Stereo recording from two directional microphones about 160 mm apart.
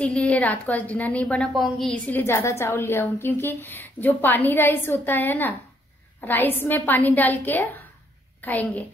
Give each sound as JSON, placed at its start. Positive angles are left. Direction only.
{"t": 0.0, "sound": "a woman's voice", "side_deg": 5}